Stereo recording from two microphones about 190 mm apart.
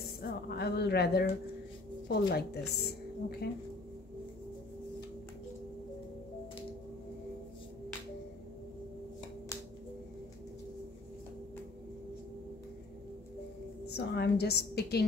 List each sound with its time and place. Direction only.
0.2 s a woman's voice: 60° left (ahead or behind)
13.8 s a woman's voice: 60° left (ahead or behind)